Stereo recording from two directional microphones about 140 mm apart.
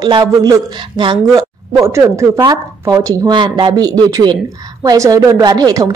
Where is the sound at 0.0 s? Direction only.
30° right (ahead or behind).